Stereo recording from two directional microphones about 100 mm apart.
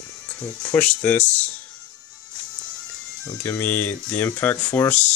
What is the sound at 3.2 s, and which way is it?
Speech, 25° left (ahead or behind).